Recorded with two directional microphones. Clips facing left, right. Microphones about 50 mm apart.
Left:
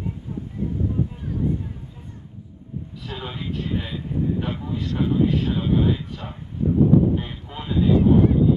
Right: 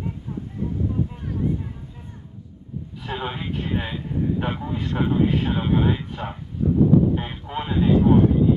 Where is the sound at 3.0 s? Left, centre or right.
Right.